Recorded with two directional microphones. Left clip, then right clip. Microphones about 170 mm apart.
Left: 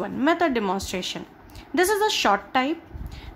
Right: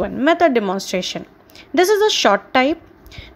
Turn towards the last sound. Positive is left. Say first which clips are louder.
# right 5 dB
turn(degrees=-30)  # may be behind; listen again after turning